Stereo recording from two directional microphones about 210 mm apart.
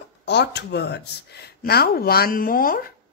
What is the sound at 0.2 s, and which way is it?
Speech, 55° left (ahead or behind).